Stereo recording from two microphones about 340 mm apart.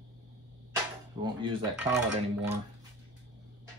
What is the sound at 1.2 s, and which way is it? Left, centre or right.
Speech, centre.